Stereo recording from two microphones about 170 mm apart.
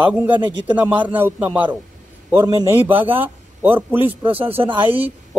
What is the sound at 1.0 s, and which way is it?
A man's voice, 10° right (ahead or behind).